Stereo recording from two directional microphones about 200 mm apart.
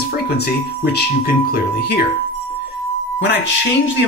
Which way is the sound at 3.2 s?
60° left (ahead or behind).